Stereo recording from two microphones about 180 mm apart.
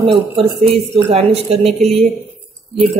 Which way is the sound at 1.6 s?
Centre (ahead or behind).